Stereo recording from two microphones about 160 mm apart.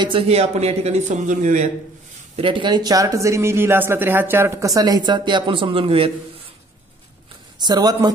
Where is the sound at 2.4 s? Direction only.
30° right (ahead or behind).